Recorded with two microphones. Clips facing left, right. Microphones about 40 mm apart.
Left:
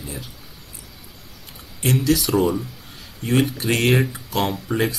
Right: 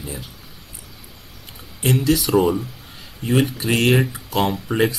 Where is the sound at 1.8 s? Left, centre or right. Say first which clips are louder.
Right 1 dB; centre.